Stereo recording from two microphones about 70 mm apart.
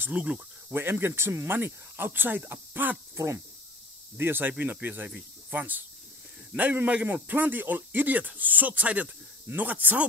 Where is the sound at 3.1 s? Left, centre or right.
Right.